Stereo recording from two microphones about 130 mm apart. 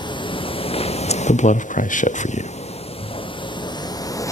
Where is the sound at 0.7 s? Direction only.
55° left (ahead or behind); by 2.1 s 80° left.